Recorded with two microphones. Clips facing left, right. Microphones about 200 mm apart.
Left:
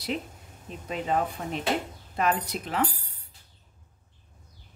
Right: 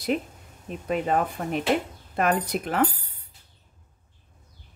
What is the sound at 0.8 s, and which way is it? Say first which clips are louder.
Speech: right 3 dB; 55° right (ahead or behind).